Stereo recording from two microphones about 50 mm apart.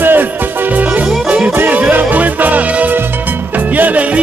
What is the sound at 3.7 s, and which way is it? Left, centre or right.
Music, right.